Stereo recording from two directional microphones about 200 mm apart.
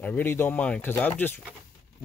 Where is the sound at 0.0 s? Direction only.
10° left (ahead or behind).